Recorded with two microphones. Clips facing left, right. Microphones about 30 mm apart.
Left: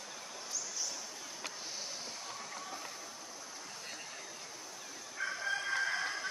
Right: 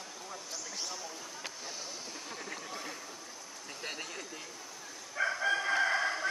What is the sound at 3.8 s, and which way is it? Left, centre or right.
Vehicle, right.